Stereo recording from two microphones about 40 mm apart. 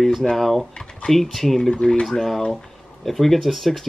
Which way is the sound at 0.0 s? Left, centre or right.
Centre.